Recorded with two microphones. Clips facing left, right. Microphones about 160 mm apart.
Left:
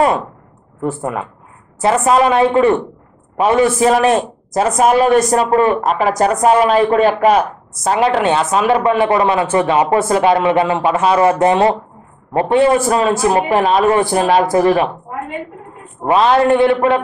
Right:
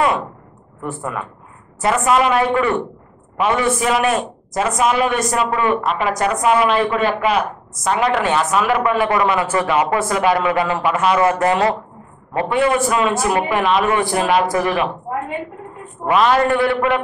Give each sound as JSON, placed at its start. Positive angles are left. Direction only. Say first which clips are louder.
{"t": 0.8, "sound": "a man's voice", "louder": "left 5 dB", "side_deg": 30}
{"t": 16.1, "sound": "a man's voice", "louder": "left 3 dB", "side_deg": 30}